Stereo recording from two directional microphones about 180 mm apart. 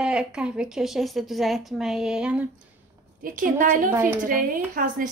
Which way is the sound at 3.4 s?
50° right (ahead or behind).